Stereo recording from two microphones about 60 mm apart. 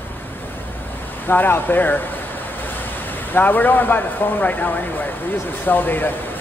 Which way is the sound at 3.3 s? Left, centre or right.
Left.